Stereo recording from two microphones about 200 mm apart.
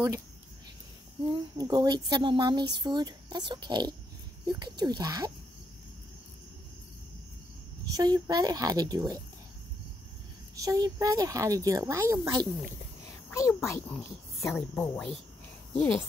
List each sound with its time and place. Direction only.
1.3 s speech: 20° right (ahead or behind)
7.9 s speech: 20° right (ahead or behind)
10.5 s speech: 15° right (ahead or behind)
13.3 s a child's voice: 15° left (ahead or behind)